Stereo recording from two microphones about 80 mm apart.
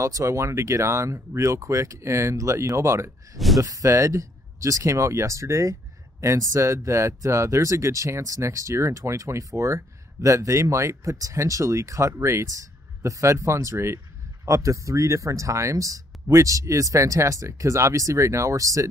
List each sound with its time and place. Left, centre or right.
0.0 s speech: right
3.3 s speech: centre
3.6 s speech: right